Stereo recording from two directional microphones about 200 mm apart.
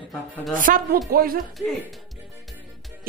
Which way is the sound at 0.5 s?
45° right (ahead or behind).